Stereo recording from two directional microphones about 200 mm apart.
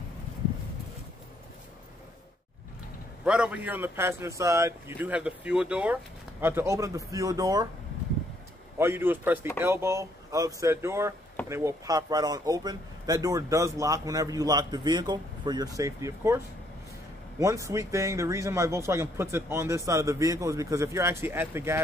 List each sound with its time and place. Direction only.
3.3 s speech: 5° right (ahead or behind)
8.7 s speech: 10° right (ahead or behind)
17.4 s speech: 15° right (ahead or behind)